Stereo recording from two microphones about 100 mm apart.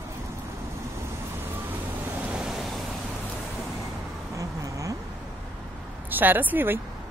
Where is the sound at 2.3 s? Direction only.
5° right (ahead or behind).